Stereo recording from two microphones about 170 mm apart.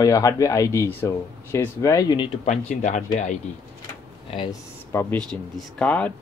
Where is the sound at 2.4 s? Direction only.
45° left (ahead or behind).